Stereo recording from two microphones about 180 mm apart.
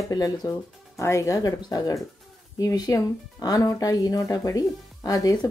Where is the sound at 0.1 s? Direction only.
20° left (ahead or behind).